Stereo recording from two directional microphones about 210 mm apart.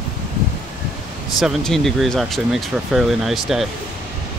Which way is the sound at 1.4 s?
Centre (ahead or behind).